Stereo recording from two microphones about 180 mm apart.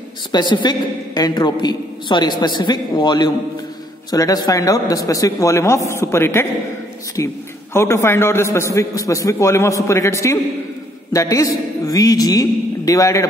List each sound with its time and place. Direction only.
0.3 s a woman's voice: 25° left (ahead or behind)